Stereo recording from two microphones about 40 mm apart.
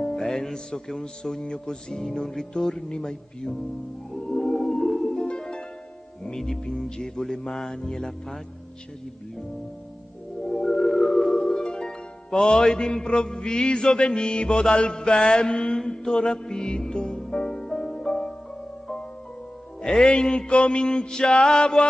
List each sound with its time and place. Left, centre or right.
0.0 s music: centre
6.2 s speech: centre
6.6 s music: centre
10.4 s music: centre
19.8 s music: centre